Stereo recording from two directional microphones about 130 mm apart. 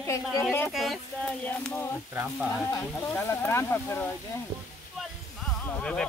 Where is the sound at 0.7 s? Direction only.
Centre (ahead or behind).